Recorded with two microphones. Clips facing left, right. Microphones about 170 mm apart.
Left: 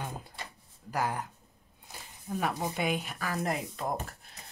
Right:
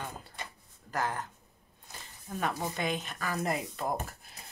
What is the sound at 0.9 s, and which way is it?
Speech, 10° left (ahead or behind).